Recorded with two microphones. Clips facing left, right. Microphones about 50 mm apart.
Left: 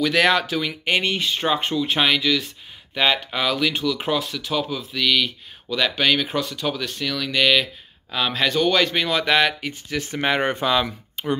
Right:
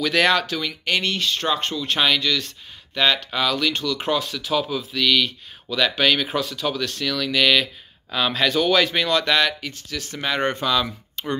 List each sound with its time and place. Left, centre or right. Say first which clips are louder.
0.0 s speech: left 1 dB; centre; by 10.4 s left
10.4 s speech: left 1 dB; centre
10.7 s speech: left 1 dB; centre